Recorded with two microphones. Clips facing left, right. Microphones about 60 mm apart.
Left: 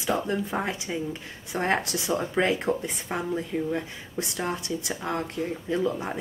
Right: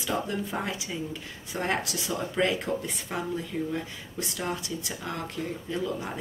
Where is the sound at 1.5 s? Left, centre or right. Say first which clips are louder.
Left 4 dB; left.